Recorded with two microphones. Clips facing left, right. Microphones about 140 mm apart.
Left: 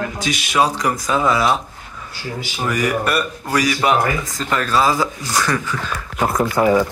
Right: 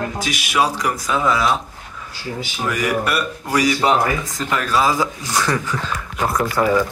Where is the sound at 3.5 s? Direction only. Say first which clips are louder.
Right 1 dB; 25° right (ahead or behind).